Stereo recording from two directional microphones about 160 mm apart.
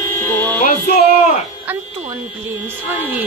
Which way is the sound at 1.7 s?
10° right (ahead or behind).